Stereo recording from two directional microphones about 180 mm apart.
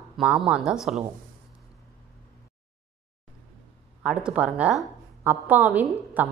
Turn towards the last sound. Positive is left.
turn(degrees=-10)  # may be behind; listen again after turning